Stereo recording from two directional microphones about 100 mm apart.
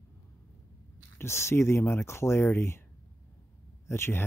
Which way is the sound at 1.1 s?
25° left (ahead or behind).